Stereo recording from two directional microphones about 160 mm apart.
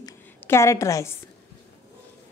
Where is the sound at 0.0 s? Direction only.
15° left (ahead or behind).